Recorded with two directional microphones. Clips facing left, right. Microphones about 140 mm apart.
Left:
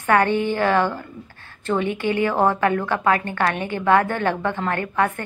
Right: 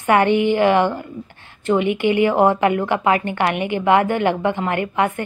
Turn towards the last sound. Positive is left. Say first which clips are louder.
# right 2 dB
turn(degrees=-15)  # may be behind; listen again after turning